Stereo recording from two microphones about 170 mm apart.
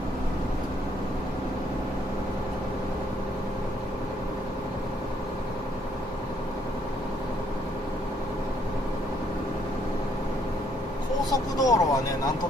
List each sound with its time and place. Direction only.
11.2 s speech: 20° left (ahead or behind)